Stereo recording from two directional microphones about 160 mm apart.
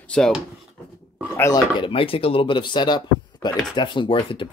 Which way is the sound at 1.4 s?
25° left (ahead or behind).